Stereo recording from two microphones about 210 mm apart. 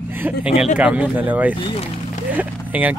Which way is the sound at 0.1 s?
10° right (ahead or behind).